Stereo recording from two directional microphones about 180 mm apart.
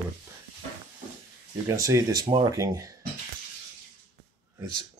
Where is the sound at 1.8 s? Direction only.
15° right (ahead or behind).